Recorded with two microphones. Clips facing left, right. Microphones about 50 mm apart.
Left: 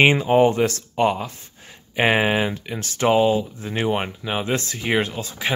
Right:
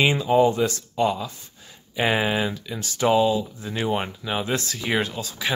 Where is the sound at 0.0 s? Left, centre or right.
Left.